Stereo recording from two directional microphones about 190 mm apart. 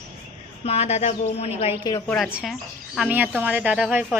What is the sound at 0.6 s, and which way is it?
A woman's voice, 35° left (ahead or behind).